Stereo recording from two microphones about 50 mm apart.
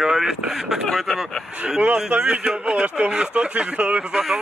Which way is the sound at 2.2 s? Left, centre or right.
Centre.